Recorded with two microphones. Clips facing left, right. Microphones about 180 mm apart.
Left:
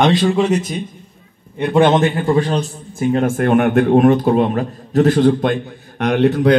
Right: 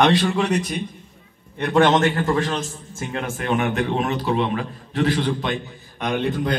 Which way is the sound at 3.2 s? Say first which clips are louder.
Left 6 dB; 50° left (ahead or behind).